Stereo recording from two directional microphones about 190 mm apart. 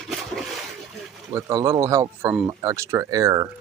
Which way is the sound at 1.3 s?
15° right (ahead or behind).